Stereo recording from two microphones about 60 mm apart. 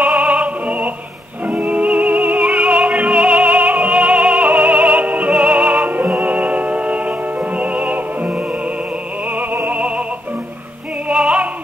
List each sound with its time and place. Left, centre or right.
0.1 s opera: centre
1.4 s music: centre
9.3 s opera: right
9.7 s music: centre
11.1 s opera: centre